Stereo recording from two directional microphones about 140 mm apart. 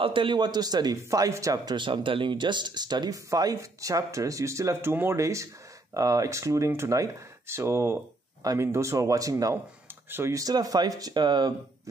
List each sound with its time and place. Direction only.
0.0 s a man's voice: 35° right (ahead or behind)